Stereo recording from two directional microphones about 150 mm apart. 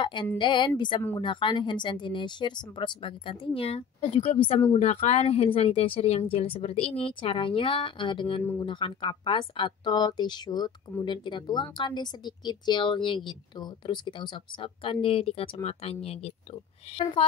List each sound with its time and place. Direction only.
0.0 s speech: 30° left (ahead or behind)